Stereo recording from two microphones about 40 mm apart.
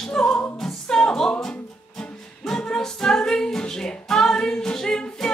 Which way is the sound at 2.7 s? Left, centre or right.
Centre.